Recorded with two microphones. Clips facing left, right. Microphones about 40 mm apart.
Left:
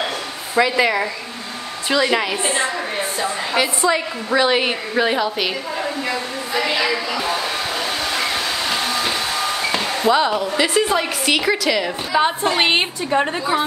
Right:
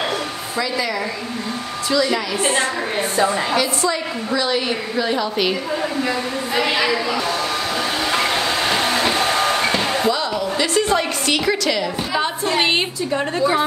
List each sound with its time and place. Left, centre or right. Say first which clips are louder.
0.6 s a woman's voice: left 6 dB; left
3.5 s a woman's voice: left 1 dB; left
5.2 s a woman's voice: right 1 dB; centre
6.5 s a sound: right 1 dB; centre
6.9 s hair dryer: right 1 dB; centre
8.0 s train: right 2 dB; centre
8.9 s a sound: right 3 dB; right
10.0 s a woman's voice: left 4 dB; left
10.6 s a woman's voice: even; centre
12.5 s a woman's voice: left 1 dB; left
13.4 s a woman's voice: right 2 dB; centre